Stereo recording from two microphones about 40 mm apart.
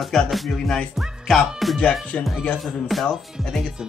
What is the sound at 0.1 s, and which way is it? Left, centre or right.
Speech, centre.